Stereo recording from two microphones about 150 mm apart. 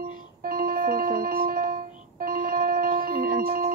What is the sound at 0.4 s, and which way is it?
Music, 75° right (ahead or behind).